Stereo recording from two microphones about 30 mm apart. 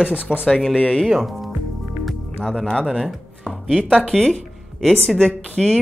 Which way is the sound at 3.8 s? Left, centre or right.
Left.